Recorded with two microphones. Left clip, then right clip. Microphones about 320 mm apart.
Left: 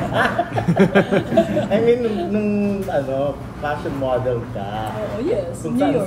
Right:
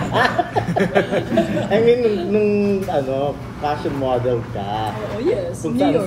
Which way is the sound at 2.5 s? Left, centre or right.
Right.